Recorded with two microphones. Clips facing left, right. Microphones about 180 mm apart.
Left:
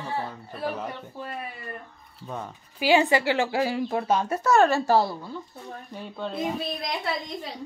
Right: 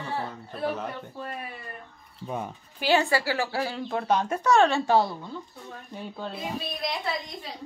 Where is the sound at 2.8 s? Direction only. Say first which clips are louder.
Left 3 dB; 15° left (ahead or behind).